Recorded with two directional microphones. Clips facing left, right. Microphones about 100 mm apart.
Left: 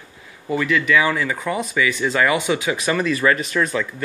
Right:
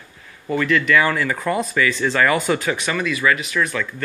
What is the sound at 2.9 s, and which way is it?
Speech, 25° left (ahead or behind).